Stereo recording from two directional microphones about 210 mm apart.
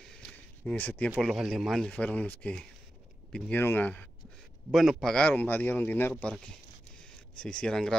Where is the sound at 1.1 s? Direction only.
Centre (ahead or behind).